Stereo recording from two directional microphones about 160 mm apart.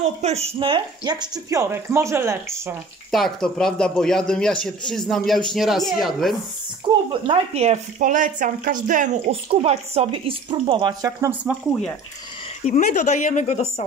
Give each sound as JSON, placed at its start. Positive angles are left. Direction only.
{"t": 0.0, "sound": "speech", "side_deg": -40}
{"t": 0.6, "sound": "speech", "side_deg": -30}
{"t": 3.1, "sound": "a man's voice", "side_deg": 0}
{"t": 7.2, "sound": "speech", "side_deg": -40}
{"t": 9.3, "sound": "speech", "side_deg": -35}
{"t": 12.6, "sound": "a woman's voice", "side_deg": 50}